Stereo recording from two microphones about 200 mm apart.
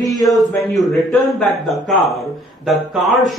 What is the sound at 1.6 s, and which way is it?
Speech, centre (ahead or behind).